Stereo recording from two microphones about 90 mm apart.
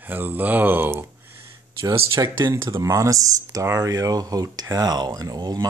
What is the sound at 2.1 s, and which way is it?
Speech, 40° right (ahead or behind).